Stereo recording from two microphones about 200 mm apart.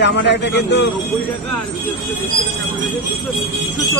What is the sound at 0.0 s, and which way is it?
Speech, 60° left (ahead or behind).